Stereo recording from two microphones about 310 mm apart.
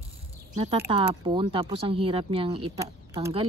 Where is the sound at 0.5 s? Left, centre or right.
Centre.